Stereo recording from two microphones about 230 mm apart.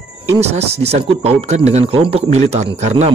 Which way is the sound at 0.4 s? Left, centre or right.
Right.